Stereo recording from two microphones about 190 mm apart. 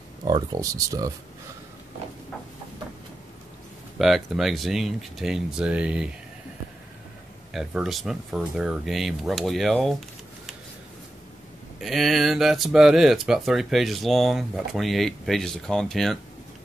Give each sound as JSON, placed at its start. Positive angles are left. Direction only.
{"t": 0.2, "sound": "speech", "side_deg": -20}
{"t": 4.0, "sound": "speech", "side_deg": 0}
{"t": 7.5, "sound": "speech", "side_deg": 0}
{"t": 11.8, "sound": "speech", "side_deg": 0}